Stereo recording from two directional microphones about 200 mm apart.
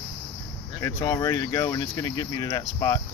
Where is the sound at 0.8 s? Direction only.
15° left (ahead or behind).